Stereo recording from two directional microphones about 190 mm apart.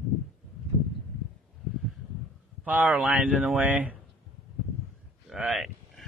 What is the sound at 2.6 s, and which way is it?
Speech, 10° right (ahead or behind).